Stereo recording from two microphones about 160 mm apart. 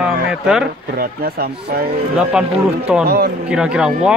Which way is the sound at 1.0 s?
70° right (ahead or behind).